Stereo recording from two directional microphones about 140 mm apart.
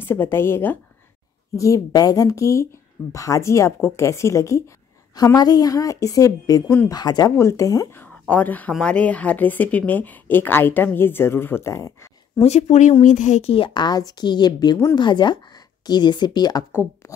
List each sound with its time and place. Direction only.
0.0 s a woman's voice: 15° left (ahead or behind)
12.4 s a woman's voice: 55° left (ahead or behind); by 16.6 s 30° left (ahead or behind)